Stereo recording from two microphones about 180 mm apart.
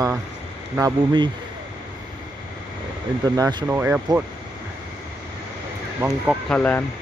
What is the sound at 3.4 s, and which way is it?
Speech, 25° right (ahead or behind).